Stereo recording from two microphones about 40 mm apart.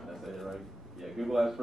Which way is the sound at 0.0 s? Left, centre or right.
Centre.